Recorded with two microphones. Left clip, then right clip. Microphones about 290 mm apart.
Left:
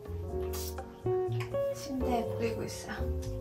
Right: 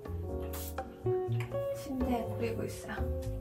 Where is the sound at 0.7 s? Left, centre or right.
Centre.